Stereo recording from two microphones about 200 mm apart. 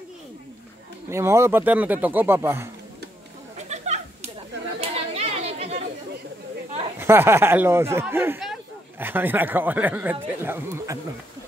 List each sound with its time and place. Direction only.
1.1 s speech: 15° right (ahead or behind)
3.5 s a sound: 35° right (ahead or behind)
4.7 s chatter: 30° right (ahead or behind)
7.0 s speech: 10° right (ahead or behind)